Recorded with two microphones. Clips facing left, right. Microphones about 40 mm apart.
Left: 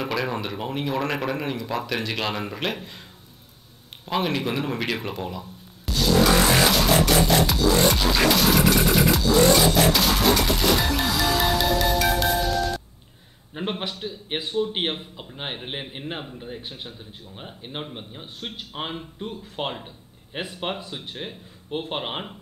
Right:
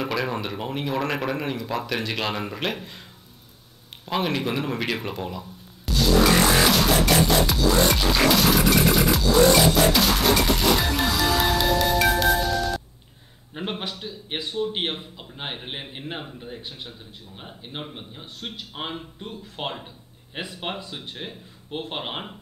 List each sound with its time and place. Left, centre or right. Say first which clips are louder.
0.0 s speech: even; centre
4.0 s speech: even; centre
5.9 s music: even; centre
13.5 s a man's voice: left 1 dB; centre
13.9 s a man's voice: left 2 dB; left
14.7 s a man's voice: left 1 dB; centre
18.2 s a man's voice: right 2 dB; left
18.8 s speech: left 2 dB; centre